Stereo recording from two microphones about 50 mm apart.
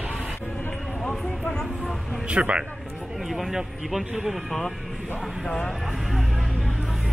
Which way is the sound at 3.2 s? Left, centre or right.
Centre.